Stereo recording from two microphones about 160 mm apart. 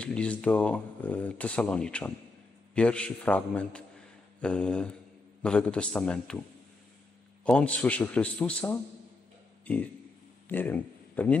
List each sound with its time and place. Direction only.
0.0 s speech: 5° left (ahead or behind)
4.4 s mantra: 5° left (ahead or behind)
5.4 s speech: 5° left (ahead or behind)
7.4 s speech: 5° left (ahead or behind)
10.5 s speech: 10° left (ahead or behind)